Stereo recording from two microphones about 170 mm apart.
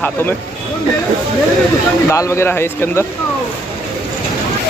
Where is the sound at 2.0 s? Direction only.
15° left (ahead or behind).